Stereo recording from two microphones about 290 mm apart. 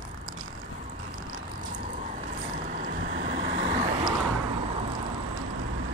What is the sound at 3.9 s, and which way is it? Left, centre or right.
Vehicle, centre.